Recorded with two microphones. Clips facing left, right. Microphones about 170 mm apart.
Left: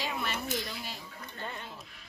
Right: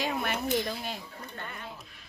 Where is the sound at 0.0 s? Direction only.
50° right (ahead or behind).